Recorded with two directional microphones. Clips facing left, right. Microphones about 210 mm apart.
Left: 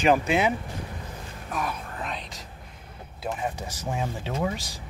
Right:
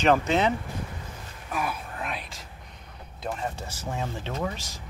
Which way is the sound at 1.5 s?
5° right (ahead or behind).